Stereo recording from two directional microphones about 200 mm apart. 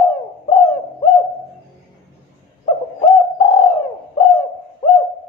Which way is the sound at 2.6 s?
30° left (ahead or behind).